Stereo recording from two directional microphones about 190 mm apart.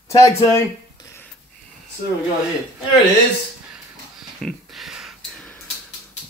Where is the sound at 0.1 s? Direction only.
15° left (ahead or behind).